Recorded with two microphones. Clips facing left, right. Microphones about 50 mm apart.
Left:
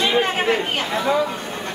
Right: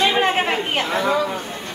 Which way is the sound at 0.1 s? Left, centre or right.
Right.